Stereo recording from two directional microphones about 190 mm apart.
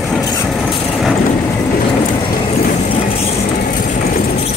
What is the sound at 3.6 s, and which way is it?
Vehicle, 50° left (ahead or behind).